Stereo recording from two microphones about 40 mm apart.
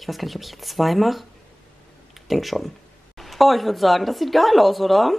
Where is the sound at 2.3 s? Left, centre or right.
Centre.